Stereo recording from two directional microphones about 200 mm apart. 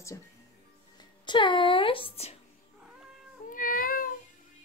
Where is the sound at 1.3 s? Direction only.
25° left (ahead or behind).